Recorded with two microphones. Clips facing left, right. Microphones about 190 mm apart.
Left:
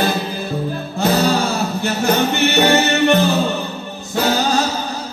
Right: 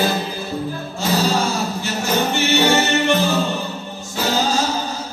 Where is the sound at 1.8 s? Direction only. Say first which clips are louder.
Left 5 dB; 60° left (ahead or behind).